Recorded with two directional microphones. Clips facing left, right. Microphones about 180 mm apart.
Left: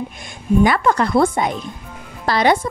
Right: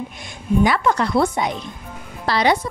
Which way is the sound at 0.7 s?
55° left (ahead or behind).